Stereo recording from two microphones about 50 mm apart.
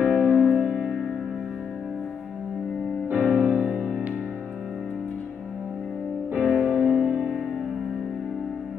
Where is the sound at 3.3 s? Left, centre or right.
Centre.